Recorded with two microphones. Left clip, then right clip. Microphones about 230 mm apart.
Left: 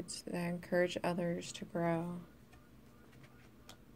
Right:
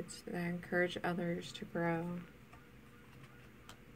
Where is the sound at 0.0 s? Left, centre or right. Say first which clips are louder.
Left 1 dB; left.